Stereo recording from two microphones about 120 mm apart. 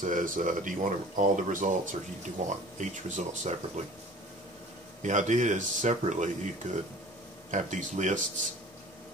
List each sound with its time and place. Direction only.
0.0 s speech: 90° right
5.0 s speech: 80° right
7.5 s speech: 80° right